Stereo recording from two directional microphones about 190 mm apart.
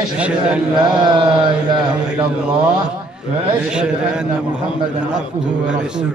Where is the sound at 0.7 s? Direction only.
25° right (ahead or behind).